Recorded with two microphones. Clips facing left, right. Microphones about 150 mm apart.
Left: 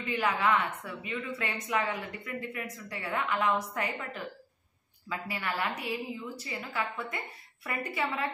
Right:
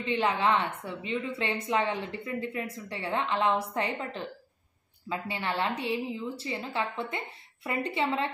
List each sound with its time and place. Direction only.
0.0 s a woman's voice: 30° right (ahead or behind)
5.3 s a woman's voice: 25° right (ahead or behind)